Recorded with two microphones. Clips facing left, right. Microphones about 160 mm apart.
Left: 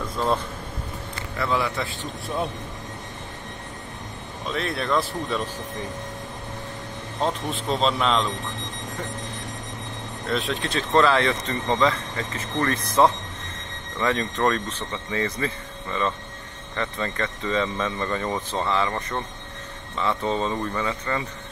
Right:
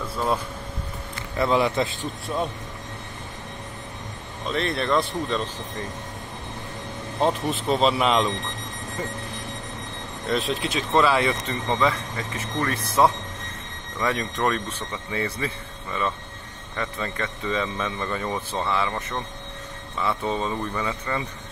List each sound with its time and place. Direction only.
0.1 s speech: 10° right (ahead or behind)
1.4 s speech: 20° right (ahead or behind)
2.3 s speech: centre (ahead or behind)
4.5 s speech: 5° left (ahead or behind)
7.2 s speech: 5° right (ahead or behind)
10.2 s speech: 5° right (ahead or behind)